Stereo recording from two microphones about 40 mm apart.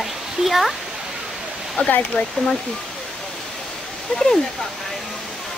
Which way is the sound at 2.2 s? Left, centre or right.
Left.